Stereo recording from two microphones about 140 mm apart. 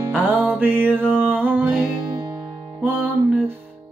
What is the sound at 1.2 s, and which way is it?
Music, 10° right (ahead or behind).